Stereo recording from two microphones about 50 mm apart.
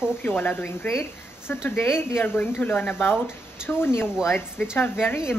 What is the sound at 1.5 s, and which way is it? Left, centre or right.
Speech, left.